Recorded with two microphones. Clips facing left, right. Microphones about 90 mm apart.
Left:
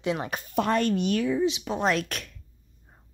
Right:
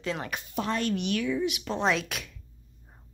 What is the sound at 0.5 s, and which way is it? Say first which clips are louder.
Speech: left 6 dB; 60° left (ahead or behind).